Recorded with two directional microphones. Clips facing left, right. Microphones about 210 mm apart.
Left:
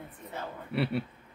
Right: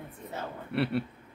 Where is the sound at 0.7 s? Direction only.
Centre (ahead or behind).